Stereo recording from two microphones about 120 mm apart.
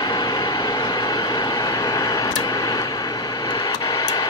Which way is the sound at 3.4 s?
35° left (ahead or behind).